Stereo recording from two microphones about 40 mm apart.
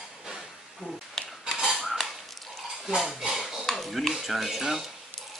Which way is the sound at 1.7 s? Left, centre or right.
Centre.